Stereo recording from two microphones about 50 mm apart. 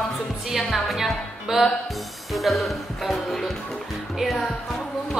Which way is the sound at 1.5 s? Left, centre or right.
Centre.